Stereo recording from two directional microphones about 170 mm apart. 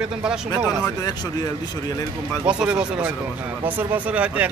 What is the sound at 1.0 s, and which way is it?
Speech, 20° left (ahead or behind).